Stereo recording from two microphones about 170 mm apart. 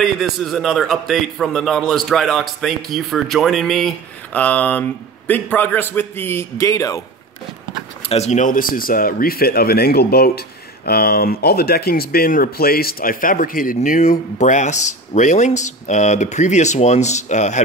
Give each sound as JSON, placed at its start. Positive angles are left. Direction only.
{"t": 0.0, "sound": "a man's voice", "side_deg": 0}
{"t": 8.1, "sound": "speech", "side_deg": 40}